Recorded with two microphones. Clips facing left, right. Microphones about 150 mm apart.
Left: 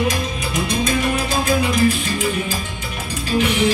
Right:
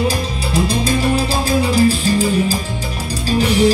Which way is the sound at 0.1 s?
30° right (ahead or behind).